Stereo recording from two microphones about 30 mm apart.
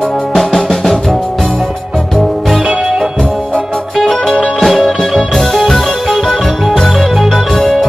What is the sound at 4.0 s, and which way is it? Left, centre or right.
Music, centre.